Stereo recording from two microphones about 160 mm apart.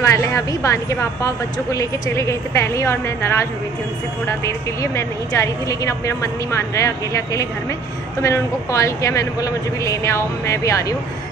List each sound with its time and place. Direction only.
0.0 s a woman's voice: 20° left (ahead or behind)